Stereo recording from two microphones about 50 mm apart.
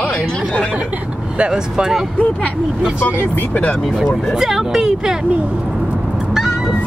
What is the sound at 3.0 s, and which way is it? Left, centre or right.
Speech, left.